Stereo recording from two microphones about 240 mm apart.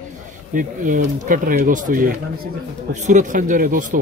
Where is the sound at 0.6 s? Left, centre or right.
Right.